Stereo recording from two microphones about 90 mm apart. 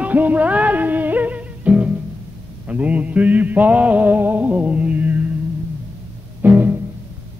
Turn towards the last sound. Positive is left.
turn(degrees=-20)  # may be behind; listen again after turning